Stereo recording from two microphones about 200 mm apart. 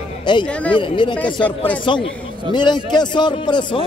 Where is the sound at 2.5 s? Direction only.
20° left (ahead or behind).